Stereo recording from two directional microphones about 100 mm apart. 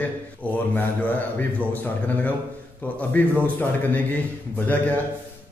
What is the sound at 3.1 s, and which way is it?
Speech, 15° left (ahead or behind).